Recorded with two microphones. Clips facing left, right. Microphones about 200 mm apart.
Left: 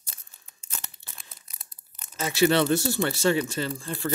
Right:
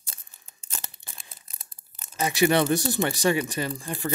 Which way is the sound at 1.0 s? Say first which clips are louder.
Right 1 dB; 15° right (ahead or behind).